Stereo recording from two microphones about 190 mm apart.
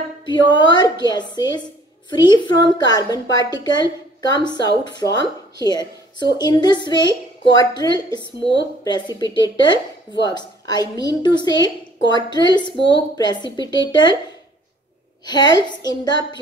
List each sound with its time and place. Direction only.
0.3 s a woman's voice: 25° left (ahead or behind)
15.2 s a woman's voice: 20° left (ahead or behind)